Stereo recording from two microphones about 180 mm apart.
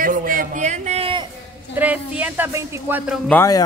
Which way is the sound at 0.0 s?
50° right (ahead or behind).